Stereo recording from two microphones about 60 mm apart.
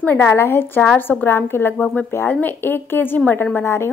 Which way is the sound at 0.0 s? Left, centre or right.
Left.